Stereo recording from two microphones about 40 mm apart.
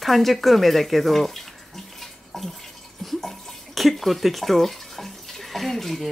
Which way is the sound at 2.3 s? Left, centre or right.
Centre.